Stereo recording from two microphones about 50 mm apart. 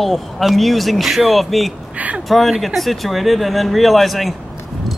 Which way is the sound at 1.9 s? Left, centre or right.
Right.